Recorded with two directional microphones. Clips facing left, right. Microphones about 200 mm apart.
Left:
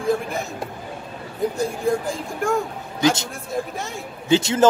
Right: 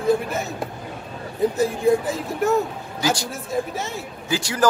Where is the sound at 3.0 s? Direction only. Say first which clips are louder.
Left 4 dB; 25° left (ahead or behind).